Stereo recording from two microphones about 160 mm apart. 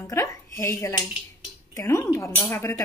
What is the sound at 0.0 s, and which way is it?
A woman's voice, 20° left (ahead or behind).